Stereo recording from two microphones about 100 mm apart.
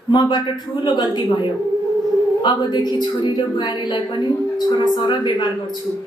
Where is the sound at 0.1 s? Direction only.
50° left (ahead or behind).